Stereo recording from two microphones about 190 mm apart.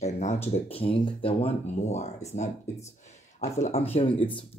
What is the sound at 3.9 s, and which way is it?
Speech, 25° left (ahead or behind).